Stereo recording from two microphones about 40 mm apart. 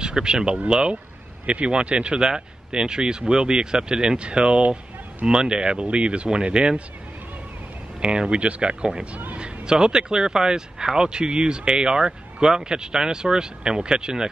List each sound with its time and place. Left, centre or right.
0.0 s speech: right
8.0 s speech: right